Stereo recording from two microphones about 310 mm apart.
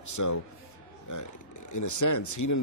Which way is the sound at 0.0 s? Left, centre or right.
Left.